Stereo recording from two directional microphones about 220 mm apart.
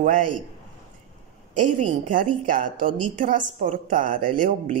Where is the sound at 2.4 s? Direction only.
35° right (ahead or behind).